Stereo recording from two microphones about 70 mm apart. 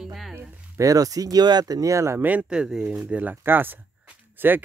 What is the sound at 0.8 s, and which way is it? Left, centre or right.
Speech, right.